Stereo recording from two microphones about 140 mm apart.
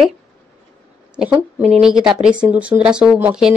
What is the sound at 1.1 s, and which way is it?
Speech, 10° right (ahead or behind).